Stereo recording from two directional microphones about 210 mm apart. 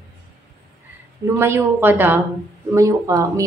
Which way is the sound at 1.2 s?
10° right (ahead or behind).